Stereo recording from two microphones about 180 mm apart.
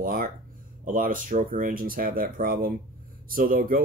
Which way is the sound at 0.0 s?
55° right (ahead or behind).